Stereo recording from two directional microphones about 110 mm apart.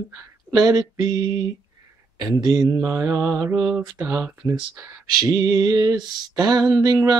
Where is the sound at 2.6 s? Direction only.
25° right (ahead or behind).